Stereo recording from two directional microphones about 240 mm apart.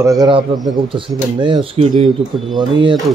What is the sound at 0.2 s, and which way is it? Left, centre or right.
Speech, right.